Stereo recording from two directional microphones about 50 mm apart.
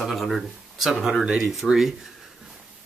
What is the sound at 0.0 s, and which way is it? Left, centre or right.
Speech, centre.